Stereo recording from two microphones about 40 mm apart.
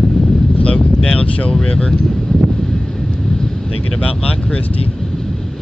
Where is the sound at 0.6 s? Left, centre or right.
Left.